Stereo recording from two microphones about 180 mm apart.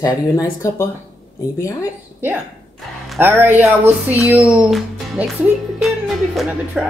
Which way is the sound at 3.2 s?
10° right (ahead or behind).